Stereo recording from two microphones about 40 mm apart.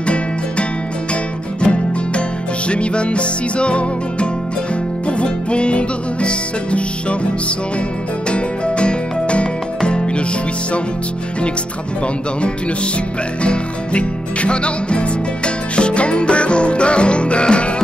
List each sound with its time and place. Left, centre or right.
0.0 s music: left
13.4 s music: left